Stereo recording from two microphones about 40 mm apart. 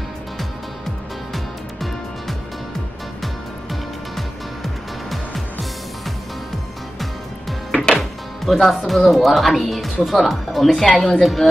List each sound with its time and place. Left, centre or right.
1.3 s music: centre
5.1 s music: centre
7.7 s music: left
8.0 s speech: centre